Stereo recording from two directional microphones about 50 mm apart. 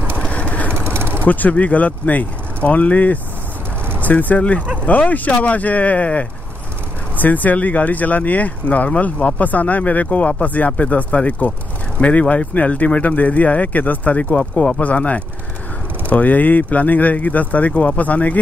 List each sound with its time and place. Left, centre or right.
0.3 s vehicle: left
0.7 s vehicle: right
1.2 s speech: left